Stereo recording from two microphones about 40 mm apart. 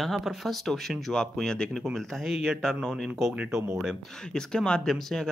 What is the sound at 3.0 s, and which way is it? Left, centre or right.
Speech, centre.